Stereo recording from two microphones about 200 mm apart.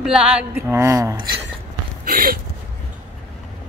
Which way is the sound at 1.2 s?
55° right (ahead or behind).